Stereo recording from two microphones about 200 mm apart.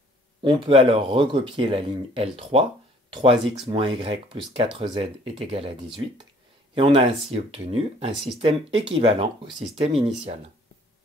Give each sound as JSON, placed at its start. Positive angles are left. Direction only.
{"t": 0.4, "sound": "speech", "side_deg": -25}